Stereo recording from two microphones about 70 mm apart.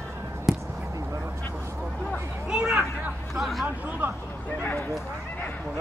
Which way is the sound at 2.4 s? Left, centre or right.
Centre.